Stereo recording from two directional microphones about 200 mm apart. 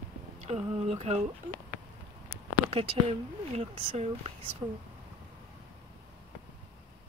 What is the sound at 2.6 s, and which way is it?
Speech, 30° right (ahead or behind).